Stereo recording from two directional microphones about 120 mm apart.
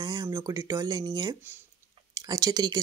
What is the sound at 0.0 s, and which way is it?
Speech, 30° right (ahead or behind).